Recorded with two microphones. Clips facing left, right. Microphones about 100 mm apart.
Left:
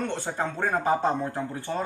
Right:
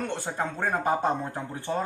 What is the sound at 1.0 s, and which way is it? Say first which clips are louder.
Speech: left 2 dB; 15° right (ahead or behind).